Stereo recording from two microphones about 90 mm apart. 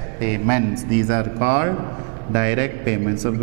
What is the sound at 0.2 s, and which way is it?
A man's voice, 15° right (ahead or behind).